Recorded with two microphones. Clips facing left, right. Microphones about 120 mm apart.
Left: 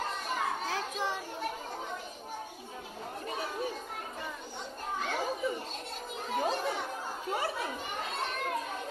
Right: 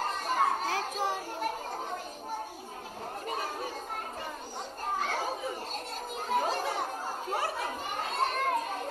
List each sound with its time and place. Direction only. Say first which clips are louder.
0.0 s children playing: right 5 dB; 45° right (ahead or behind)
3.3 s children playing: even; 45° right (ahead or behind)
4.8 s children playing: right 1 dB; 40° right (ahead or behind)